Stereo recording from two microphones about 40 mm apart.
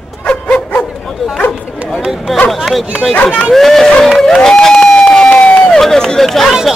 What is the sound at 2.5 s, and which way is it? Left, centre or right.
A man's voice, centre.